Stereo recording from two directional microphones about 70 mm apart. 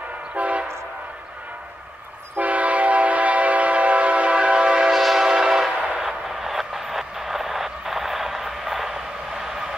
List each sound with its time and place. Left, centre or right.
0.4 s train: right
2.3 s train: right; by 9.8 s centre